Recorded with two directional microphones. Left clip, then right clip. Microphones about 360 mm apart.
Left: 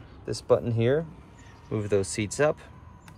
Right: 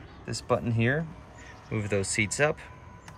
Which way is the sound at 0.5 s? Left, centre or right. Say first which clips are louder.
Left 4 dB; centre.